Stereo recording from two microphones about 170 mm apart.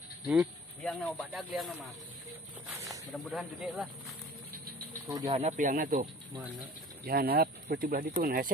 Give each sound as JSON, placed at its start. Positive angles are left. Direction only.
{"t": 0.3, "sound": "speech", "side_deg": 0}
{"t": 3.1, "sound": "speech", "side_deg": 0}
{"t": 5.2, "sound": "speech", "side_deg": -40}
{"t": 6.6, "sound": "speech", "side_deg": -65}